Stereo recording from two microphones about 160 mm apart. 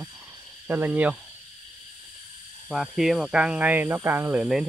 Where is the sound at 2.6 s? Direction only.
Centre (ahead or behind).